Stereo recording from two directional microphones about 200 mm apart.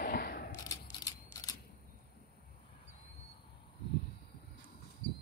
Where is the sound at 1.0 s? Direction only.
15° left (ahead or behind).